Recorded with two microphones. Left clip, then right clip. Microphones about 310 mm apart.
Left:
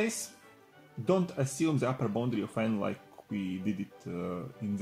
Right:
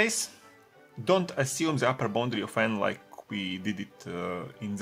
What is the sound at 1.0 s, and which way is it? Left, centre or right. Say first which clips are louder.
Speech: right 4 dB; right.